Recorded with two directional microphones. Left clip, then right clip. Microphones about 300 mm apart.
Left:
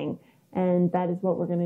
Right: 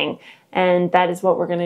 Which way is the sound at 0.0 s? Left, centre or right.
Centre.